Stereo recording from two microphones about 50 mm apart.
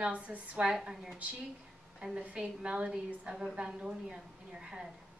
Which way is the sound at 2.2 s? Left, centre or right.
Right.